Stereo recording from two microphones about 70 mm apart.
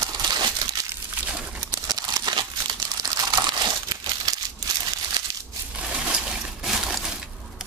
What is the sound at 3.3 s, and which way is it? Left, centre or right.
Crumpling, right.